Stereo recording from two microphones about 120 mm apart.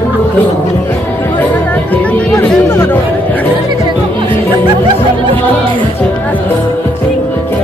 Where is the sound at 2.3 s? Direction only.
20° left (ahead or behind).